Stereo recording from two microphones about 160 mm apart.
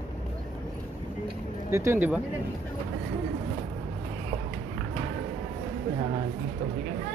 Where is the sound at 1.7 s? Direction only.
15° right (ahead or behind).